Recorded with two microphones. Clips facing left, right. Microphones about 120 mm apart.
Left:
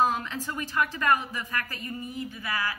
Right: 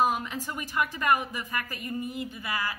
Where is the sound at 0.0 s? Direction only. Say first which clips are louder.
Even; 15° right (ahead or behind).